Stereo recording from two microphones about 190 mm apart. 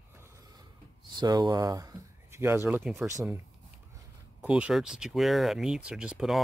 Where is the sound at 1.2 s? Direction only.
20° right (ahead or behind).